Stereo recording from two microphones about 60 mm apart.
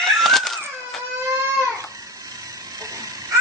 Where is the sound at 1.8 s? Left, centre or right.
Right.